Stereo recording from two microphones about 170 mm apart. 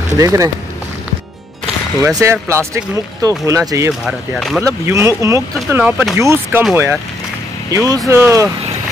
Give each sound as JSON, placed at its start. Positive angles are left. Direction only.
{"t": 0.2, "sound": "speech", "side_deg": -20}
{"t": 2.2, "sound": "speech", "side_deg": -15}
{"t": 4.0, "sound": "speech", "side_deg": 0}
{"t": 4.6, "sound": "speech", "side_deg": -15}